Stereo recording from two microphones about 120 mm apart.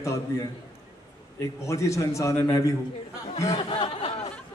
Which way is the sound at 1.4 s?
25° left (ahead or behind).